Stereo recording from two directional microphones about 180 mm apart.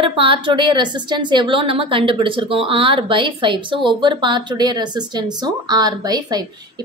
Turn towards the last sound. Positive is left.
turn(degrees=-20)  # may be behind; listen again after turning